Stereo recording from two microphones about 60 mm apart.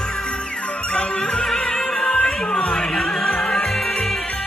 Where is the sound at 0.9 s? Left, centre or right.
Centre.